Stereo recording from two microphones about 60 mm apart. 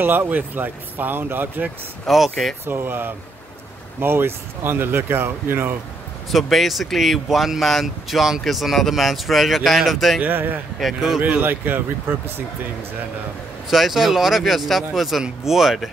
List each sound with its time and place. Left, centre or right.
0.0 s speech: right
2.0 s speech: centre
2.6 s speech: right
6.3 s speech: centre
10.2 s speech: right
11.0 s speech: centre
11.2 s speech: right
13.7 s speech: centre